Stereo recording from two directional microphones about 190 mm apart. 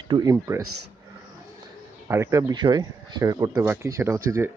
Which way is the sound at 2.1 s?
15° right (ahead or behind).